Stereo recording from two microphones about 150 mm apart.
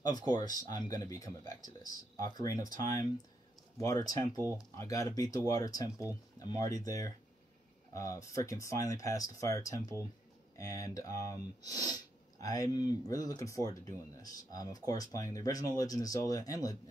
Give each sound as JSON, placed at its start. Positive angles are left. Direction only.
{"t": 0.0, "sound": "speech", "side_deg": 25}